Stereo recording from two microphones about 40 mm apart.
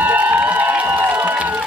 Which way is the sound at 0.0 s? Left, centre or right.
Right.